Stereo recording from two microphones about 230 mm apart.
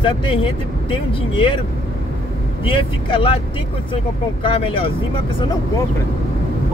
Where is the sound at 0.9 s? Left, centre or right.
Left.